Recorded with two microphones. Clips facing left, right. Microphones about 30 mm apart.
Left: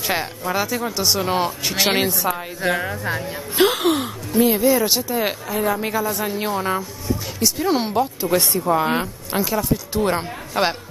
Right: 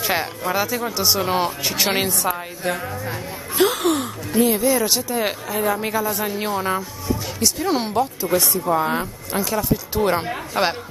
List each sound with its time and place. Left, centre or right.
0.0 s a woman's voice: centre
2.6 s speech: left
4.4 s a woman's voice: centre
8.2 s a woman's voice: left
9.5 s a woman's voice: centre